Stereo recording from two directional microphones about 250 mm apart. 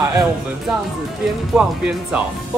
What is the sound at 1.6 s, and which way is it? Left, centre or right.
Music, centre.